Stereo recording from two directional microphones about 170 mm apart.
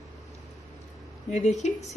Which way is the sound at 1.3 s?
45° left (ahead or behind).